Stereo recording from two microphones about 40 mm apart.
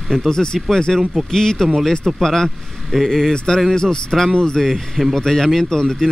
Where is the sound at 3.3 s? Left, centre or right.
Centre.